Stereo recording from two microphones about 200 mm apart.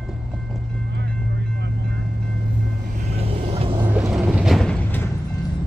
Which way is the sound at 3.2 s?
30° right (ahead or behind).